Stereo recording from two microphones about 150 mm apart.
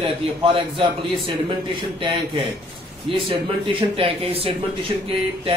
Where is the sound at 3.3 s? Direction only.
40° right (ahead or behind).